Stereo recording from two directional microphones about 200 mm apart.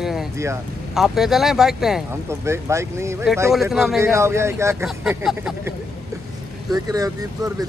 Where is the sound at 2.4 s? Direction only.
15° right (ahead or behind).